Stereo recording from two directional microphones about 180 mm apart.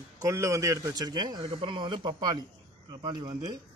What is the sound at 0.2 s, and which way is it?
A man's voice, 15° right (ahead or behind).